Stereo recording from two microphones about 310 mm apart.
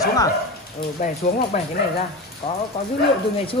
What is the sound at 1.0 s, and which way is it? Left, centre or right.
Speech, left.